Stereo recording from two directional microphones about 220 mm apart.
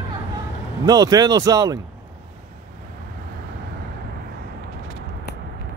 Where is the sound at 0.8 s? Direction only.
20° right (ahead or behind).